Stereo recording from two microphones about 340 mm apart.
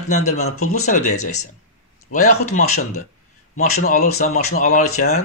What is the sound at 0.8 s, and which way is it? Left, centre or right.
Speech, left.